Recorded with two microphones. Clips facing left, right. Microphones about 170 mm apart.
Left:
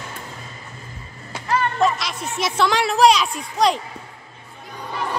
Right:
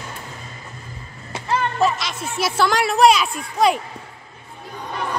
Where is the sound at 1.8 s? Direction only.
Centre (ahead or behind).